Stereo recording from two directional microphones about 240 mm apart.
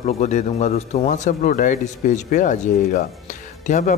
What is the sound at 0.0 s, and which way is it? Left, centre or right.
Speech, left.